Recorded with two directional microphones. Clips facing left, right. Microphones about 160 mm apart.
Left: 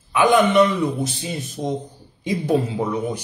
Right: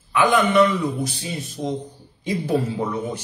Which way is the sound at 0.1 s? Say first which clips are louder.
Left 2 dB; 20° left (ahead or behind).